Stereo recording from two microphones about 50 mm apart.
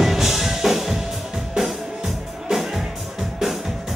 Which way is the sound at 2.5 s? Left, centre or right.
Centre.